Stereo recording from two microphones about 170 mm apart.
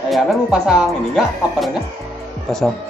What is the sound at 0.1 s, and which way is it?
Speech, centre (ahead or behind).